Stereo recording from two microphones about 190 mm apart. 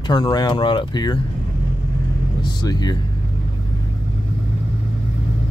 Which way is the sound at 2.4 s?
20° left (ahead or behind).